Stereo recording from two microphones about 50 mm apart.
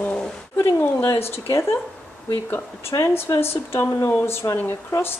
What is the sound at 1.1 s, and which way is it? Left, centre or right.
Speech, left.